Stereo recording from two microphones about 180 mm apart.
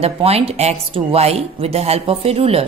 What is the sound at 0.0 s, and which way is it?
A woman's voice, 35° right (ahead or behind).